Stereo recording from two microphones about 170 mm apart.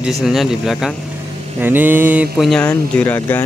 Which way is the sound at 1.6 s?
10° right (ahead or behind).